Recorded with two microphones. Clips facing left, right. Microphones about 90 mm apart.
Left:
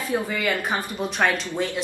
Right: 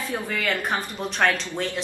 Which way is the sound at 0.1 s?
10° left (ahead or behind).